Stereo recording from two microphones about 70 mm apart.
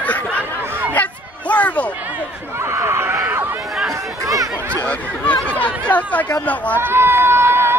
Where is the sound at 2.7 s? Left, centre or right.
Right.